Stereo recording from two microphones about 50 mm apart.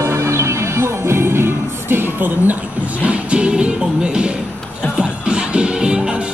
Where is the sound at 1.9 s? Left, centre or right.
Right.